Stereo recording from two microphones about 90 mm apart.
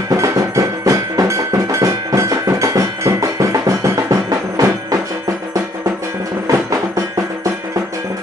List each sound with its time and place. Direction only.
0.1 s music: 40° right (ahead or behind)
6.4 s music: 40° right (ahead or behind)